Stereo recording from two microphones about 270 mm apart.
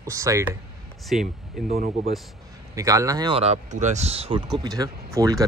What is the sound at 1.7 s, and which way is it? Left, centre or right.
Speech, right.